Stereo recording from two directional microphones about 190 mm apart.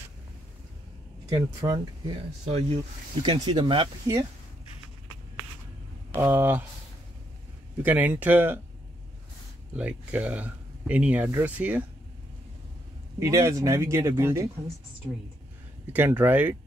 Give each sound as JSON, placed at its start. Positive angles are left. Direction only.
{"t": 1.2, "sound": "speech", "side_deg": -15}
{"t": 2.4, "sound": "speech", "side_deg": -30}
{"t": 6.1, "sound": "speech", "side_deg": -15}
{"t": 7.8, "sound": "speech", "side_deg": -10}
{"t": 9.8, "sound": "speech", "side_deg": -5}
{"t": 13.2, "sound": "speech", "side_deg": -15}
{"t": 15.9, "sound": "speech", "side_deg": -10}